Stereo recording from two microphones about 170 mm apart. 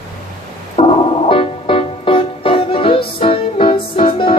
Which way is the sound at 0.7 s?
35° left (ahead or behind).